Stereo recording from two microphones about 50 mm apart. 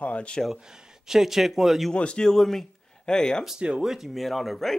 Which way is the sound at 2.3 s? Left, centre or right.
Centre.